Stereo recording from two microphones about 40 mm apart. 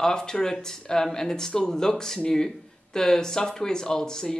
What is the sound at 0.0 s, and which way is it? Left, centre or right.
Speech, centre.